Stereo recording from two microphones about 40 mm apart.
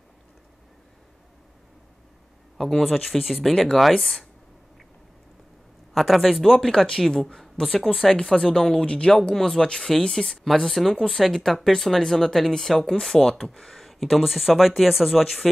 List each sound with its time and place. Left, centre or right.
2.5 s speech: centre
5.9 s speech: centre
6.6 s speech: centre
7.2 s speech: centre
7.9 s speech: centre
8.2 s speech: centre
9.3 s speech: centre